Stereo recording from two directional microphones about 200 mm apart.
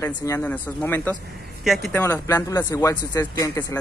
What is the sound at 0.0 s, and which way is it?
Speech, 10° left (ahead or behind).